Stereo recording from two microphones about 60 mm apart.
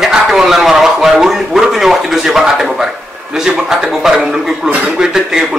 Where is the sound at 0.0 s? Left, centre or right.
Centre.